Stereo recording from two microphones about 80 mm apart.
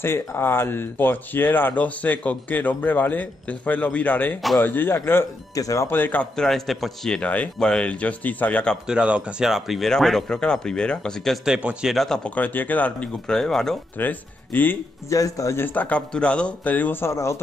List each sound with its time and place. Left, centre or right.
0.0 s speech: left
5.6 s speech: left
5.9 s speech: left
6.3 s a man's voice: centre
7.2 s speech: centre
8.8 s speech: centre
9.5 s speech: centre
11.4 s speech: centre
12.2 s speech: left; by 13.7 s centre
13.9 s speech: left
15.0 s speech: left
15.6 s speech: left